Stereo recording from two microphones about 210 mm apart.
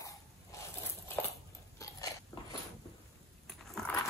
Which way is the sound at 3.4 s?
Centre (ahead or behind).